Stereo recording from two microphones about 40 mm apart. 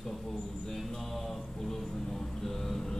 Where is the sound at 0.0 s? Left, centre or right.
Centre.